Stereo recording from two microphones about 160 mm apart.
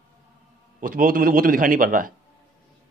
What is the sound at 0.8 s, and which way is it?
Speech, 60° right (ahead or behind).